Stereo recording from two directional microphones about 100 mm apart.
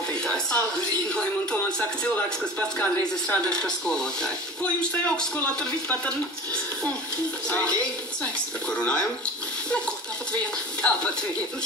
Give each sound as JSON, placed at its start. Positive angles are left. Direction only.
{"t": 0.1, "sound": "speech", "side_deg": 10}
{"t": 7.4, "sound": "speech", "side_deg": 10}
{"t": 10.8, "sound": "speech", "side_deg": 10}